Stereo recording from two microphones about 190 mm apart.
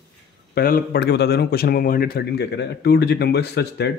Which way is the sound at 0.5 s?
50° left (ahead or behind).